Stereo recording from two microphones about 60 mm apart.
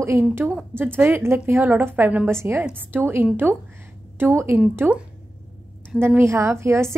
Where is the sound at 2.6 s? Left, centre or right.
Right.